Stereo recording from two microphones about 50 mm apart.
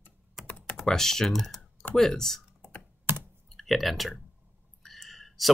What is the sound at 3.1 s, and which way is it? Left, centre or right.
Computer keyboard, right.